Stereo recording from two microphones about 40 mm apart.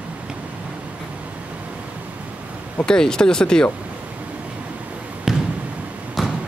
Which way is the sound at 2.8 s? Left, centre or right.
Centre.